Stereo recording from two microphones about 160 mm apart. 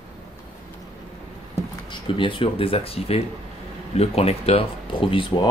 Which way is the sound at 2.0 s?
30° left (ahead or behind).